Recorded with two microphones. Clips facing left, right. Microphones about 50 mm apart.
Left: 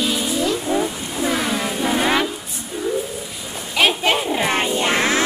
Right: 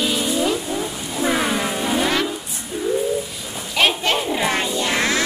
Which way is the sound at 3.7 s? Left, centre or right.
Centre.